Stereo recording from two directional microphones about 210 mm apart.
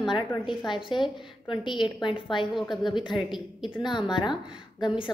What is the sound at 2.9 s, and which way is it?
A woman's voice, 20° left (ahead or behind).